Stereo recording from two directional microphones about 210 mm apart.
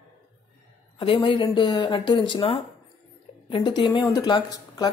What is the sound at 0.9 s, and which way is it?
Speech, 25° left (ahead or behind).